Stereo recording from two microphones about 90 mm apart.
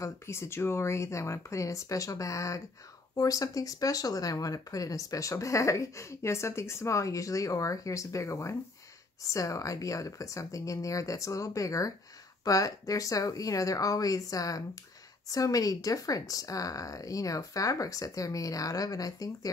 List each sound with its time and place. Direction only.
0.0 s speech: 30° left (ahead or behind)